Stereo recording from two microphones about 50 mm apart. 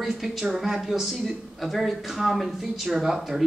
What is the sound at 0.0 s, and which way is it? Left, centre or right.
Speech, centre.